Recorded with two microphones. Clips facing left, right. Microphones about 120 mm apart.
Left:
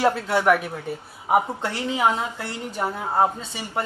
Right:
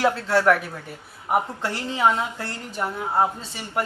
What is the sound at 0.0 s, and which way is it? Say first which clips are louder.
Speech: even; 10° left (ahead or behind).